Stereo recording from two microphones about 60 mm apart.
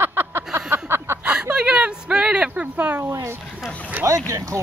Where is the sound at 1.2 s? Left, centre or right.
Centre.